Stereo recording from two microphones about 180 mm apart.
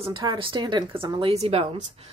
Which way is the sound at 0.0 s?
25° right (ahead or behind).